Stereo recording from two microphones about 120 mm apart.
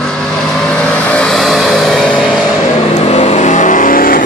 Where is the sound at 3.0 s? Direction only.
60° left (ahead or behind); by 3.9 s 90° left.